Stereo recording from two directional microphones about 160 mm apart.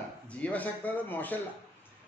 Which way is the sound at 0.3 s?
10° left (ahead or behind).